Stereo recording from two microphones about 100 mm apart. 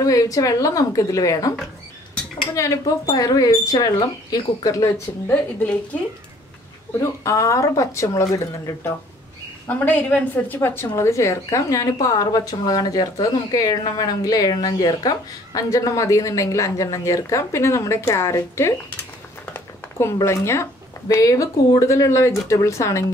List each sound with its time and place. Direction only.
0.0 s a woman's voice: 35° left (ahead or behind)
2.5 s a woman's voice: 30° left (ahead or behind)
5.3 s a woman's voice: 15° left (ahead or behind)
7.0 s a woman's voice: 30° left (ahead or behind)
9.7 s a woman's voice: 15° left (ahead or behind)
19.4 s a sound: 25° left (ahead or behind)
21.1 s a woman's voice: 35° left (ahead or behind)